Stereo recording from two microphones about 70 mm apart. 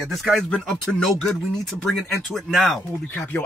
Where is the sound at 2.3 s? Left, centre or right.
Centre.